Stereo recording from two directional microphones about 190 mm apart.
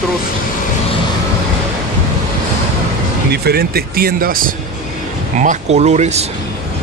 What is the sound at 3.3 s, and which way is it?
Speech, 55° right (ahead or behind).